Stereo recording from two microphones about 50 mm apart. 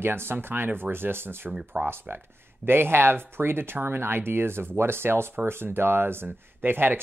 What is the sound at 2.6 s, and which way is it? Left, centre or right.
Speech, right.